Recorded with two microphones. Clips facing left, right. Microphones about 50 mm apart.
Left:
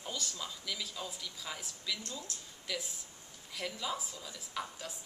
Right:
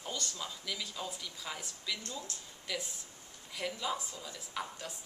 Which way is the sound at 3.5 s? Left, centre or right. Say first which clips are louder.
Right 2 dB; centre.